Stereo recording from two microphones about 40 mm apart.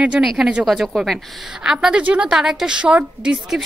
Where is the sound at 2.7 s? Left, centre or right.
Right.